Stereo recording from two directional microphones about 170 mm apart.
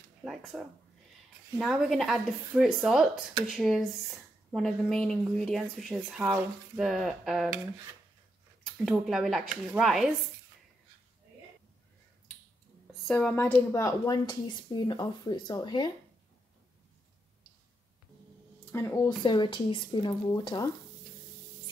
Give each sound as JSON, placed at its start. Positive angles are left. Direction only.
{"t": 0.2, "sound": "speech", "side_deg": -5}
{"t": 8.8, "sound": "speech", "side_deg": 0}
{"t": 13.0, "sound": "a woman's voice", "side_deg": 5}
{"t": 18.7, "sound": "speech", "side_deg": 15}
{"t": 19.2, "sound": "a woman's voice", "side_deg": 25}